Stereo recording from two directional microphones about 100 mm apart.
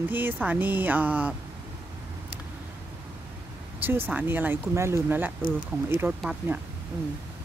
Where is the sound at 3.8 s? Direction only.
20° right (ahead or behind).